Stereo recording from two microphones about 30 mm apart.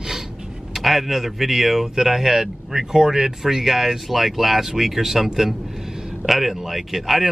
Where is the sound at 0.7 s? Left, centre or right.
Centre.